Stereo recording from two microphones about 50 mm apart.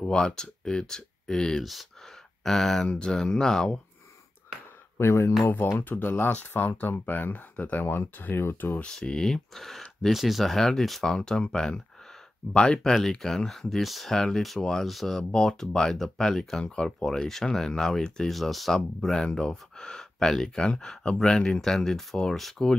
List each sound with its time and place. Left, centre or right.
0.1 s speech: centre
1.6 s speech: centre
4.9 s speech: left
5.8 s speech: left
8.2 s speech: left
8.8 s speech: centre
13.2 s speech: centre
16.6 s speech: centre
18.3 s speech: centre